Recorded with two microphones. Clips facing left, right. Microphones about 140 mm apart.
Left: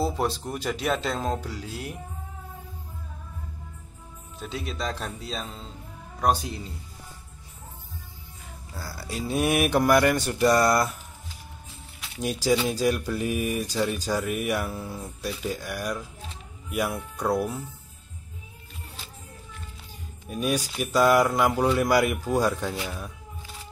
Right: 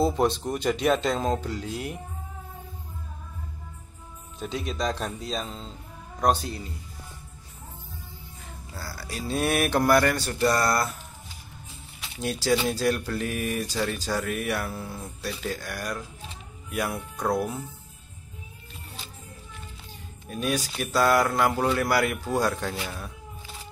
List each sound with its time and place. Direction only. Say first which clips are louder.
0.0 s speech: right 3 dB; 5° left (ahead or behind)
4.4 s speech: right 3 dB; centre (ahead or behind)
6.2 s speech: even; 20° left (ahead or behind)
8.7 s speech: left 2 dB; 20° left (ahead or behind)
12.2 s speech: left 1 dB; 10° left (ahead or behind)
20.2 s speech: left 1 dB; 10° left (ahead or behind)